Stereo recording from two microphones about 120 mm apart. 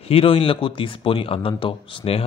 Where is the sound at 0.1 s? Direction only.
50° left (ahead or behind).